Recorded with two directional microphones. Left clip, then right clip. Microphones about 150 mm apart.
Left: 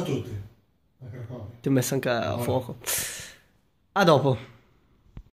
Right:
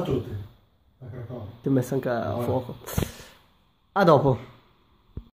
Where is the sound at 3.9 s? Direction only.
5° right (ahead or behind).